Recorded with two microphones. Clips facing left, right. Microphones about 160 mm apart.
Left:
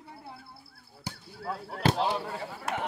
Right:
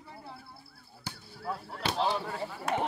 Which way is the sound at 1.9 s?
15° left (ahead or behind).